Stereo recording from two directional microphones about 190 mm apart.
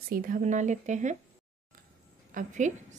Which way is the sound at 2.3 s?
40° right (ahead or behind).